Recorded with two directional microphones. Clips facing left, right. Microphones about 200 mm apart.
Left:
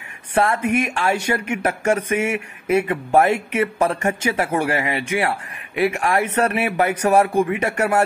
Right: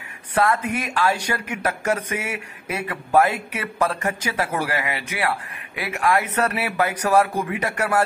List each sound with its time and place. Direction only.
0.3 s a man's voice: 30° left (ahead or behind)